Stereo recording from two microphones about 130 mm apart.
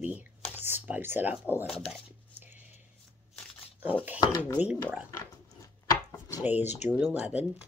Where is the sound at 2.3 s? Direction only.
15° right (ahead or behind).